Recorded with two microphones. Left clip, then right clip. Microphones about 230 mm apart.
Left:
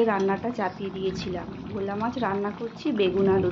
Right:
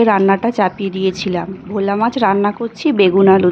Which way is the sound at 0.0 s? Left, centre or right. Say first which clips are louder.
Right 11 dB; right.